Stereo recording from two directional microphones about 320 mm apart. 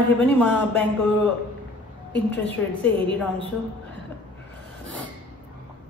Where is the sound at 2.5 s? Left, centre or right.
Centre.